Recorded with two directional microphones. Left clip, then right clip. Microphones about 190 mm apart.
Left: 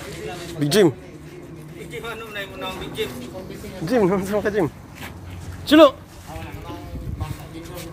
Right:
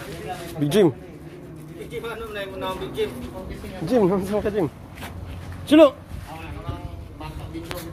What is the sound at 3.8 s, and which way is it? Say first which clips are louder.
Speech: left 1 dB; 10° left (ahead or behind).